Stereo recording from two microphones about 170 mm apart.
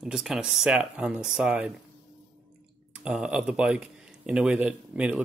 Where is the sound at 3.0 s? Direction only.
5° right (ahead or behind).